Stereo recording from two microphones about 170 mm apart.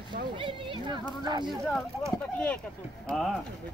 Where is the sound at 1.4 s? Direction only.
Centre (ahead or behind).